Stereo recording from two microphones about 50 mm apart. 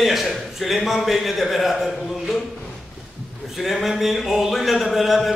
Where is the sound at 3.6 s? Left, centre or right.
Centre.